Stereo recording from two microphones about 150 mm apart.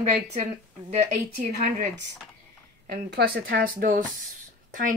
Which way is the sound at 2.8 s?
90° right.